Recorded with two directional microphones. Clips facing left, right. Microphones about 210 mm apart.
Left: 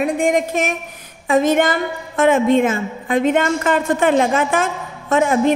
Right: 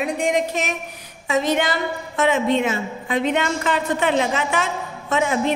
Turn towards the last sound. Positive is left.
turn(degrees=50)  # may be behind; listen again after turning